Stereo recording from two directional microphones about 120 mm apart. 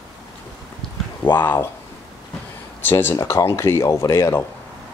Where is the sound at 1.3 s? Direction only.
15° left (ahead or behind).